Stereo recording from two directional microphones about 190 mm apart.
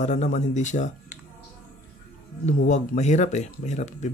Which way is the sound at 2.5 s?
40° left (ahead or behind).